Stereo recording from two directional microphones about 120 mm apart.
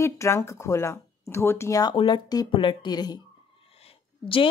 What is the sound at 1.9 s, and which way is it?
Speech, 40° left (ahead or behind).